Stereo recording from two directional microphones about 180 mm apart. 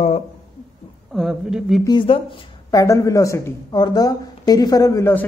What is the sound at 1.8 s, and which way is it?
A woman's voice, 25° left (ahead or behind).